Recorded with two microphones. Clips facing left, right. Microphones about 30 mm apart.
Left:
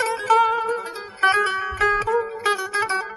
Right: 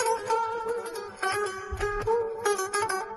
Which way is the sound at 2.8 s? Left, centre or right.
Left.